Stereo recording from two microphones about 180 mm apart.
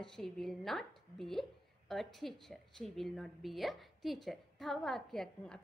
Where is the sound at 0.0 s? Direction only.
5° left (ahead or behind).